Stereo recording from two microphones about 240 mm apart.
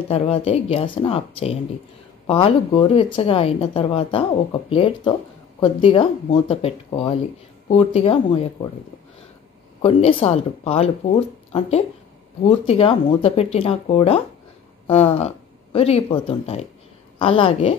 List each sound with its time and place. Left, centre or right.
0.1 s a woman's voice: left
9.8 s a woman's voice: left
12.4 s a woman's voice: left